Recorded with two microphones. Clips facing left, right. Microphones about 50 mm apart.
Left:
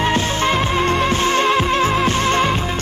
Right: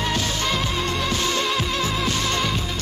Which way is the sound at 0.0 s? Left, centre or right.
Left.